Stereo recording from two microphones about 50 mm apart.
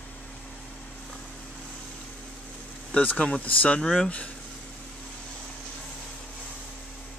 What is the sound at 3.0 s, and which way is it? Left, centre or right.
Speech, left.